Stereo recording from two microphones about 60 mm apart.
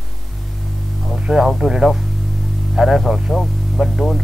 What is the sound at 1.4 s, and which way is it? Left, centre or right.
Speech, centre.